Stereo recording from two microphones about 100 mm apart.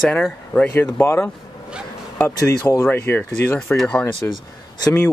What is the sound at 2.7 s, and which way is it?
Speech, 25° left (ahead or behind).